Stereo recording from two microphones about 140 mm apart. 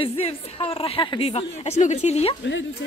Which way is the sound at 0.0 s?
40° left (ahead or behind).